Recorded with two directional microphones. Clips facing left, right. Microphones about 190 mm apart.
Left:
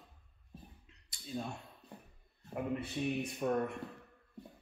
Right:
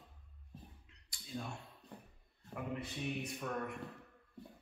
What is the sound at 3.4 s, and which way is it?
Speech, 30° left (ahead or behind).